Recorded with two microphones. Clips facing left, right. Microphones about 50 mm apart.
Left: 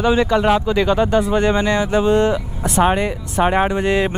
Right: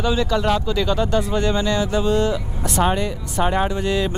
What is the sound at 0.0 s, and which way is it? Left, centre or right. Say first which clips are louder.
Speech: left 5 dB; left.